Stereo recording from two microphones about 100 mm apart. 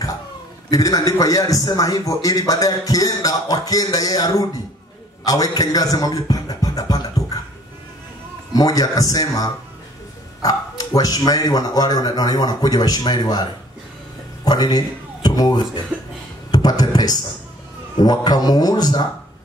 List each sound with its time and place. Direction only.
0.7 s a man's voice: 35° left (ahead or behind)
8.5 s a man's voice: 40° left (ahead or behind)